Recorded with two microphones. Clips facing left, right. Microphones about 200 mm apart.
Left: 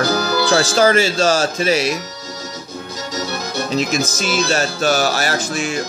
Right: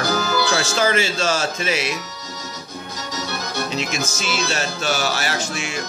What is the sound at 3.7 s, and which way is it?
Music, 40° left (ahead or behind).